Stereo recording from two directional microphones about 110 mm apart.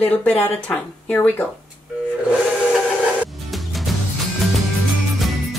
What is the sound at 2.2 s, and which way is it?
Music, 5° right (ahead or behind).